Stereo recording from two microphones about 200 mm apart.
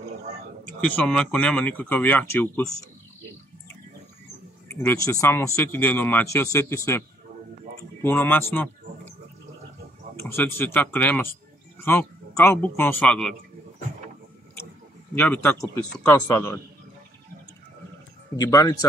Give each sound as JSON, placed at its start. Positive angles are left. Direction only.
{"t": 0.7, "sound": "speech", "side_deg": 5}
{"t": 4.8, "sound": "speech", "side_deg": 15}
{"t": 10.1, "sound": "speech", "side_deg": 10}
{"t": 15.1, "sound": "speech", "side_deg": 10}
{"t": 18.3, "sound": "speech", "side_deg": 15}